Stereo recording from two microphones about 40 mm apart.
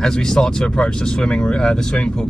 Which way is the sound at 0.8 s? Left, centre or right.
Left.